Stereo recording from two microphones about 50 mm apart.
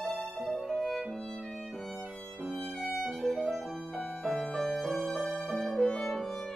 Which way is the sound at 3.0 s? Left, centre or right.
Centre.